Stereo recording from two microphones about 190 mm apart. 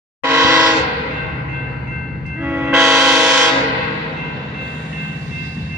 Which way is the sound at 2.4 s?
10° right (ahead or behind).